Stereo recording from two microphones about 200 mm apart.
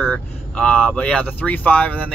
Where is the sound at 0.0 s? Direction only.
5° left (ahead or behind).